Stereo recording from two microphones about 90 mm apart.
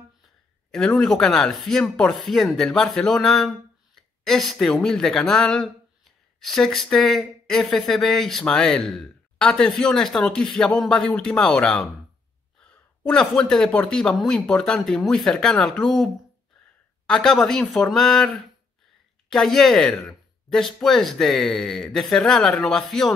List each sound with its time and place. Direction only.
0.7 s speech: 5° left (ahead or behind)
13.0 s speech: 5° left (ahead or behind)